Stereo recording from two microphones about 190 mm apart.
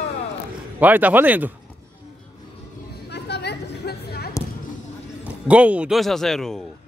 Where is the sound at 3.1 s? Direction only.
60° left (ahead or behind).